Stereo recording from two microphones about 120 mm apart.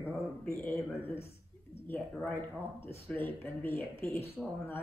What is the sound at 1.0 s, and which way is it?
Speech, 20° left (ahead or behind).